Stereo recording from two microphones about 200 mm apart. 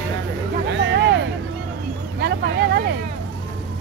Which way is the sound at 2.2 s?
55° right (ahead or behind).